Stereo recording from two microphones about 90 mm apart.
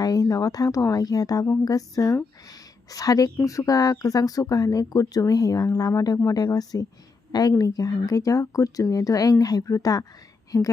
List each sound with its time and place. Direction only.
0.0 s speech: 40° left (ahead or behind)